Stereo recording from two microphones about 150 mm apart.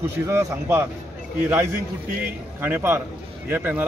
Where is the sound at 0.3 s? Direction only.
20° right (ahead or behind).